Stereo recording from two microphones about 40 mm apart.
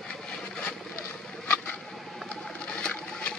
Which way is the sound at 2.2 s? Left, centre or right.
Left.